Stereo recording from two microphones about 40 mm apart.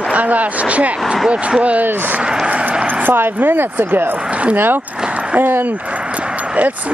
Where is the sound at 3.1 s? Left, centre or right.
Right.